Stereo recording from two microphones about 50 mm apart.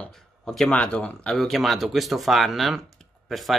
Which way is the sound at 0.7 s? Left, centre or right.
Left.